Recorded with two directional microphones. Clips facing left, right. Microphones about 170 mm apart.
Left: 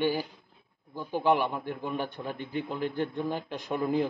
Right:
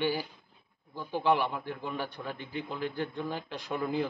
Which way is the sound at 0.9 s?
15° left (ahead or behind).